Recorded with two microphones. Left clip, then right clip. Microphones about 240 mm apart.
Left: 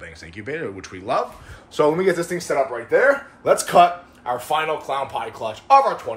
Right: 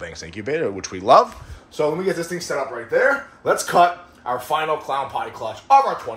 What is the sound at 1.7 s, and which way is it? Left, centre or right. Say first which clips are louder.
Speech: left 3 dB; centre.